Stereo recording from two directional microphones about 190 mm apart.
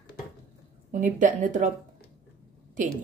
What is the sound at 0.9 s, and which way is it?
Speech, 40° right (ahead or behind).